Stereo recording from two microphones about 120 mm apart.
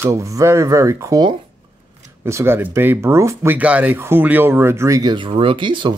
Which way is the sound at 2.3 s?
20° right (ahead or behind).